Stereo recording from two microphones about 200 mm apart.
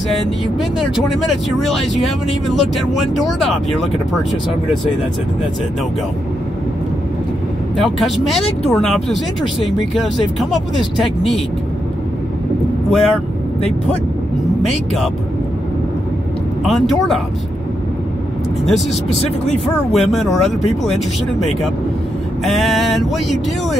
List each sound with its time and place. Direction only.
0.1 s speech: centre (ahead or behind)
7.7 s speech: centre (ahead or behind)
12.9 s speech: centre (ahead or behind)
18.7 s speech: centre (ahead or behind)
19.2 s speech: 35° left (ahead or behind)
19.9 s speech: centre (ahead or behind)
22.4 s speech: centre (ahead or behind)